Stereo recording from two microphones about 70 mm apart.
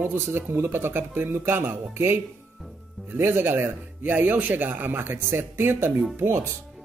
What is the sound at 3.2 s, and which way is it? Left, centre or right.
A man's voice, right.